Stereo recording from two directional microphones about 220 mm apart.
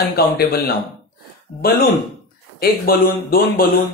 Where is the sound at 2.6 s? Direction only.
40° left (ahead or behind).